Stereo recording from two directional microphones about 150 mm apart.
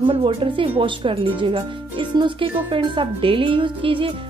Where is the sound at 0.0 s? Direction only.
35° right (ahead or behind).